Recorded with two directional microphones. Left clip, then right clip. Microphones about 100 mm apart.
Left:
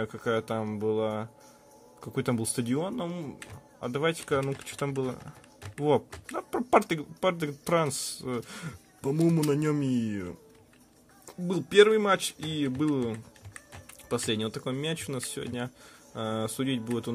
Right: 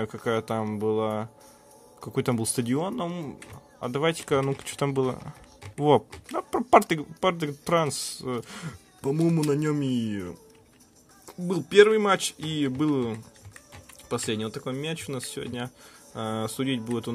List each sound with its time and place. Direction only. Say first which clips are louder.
0.0 s speech: right 2 dB; 30° right (ahead or behind)
9.1 s speech: right 1 dB; 10° right (ahead or behind); by 13.2 s 25° right (ahead or behind)
14.0 s speech: even; 15° right (ahead or behind)